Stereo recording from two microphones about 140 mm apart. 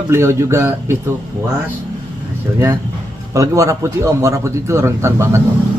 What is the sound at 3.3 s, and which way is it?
A man's voice, 20° right (ahead or behind).